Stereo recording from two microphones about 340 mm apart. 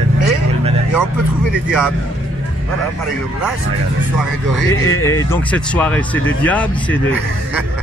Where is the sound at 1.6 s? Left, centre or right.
Centre.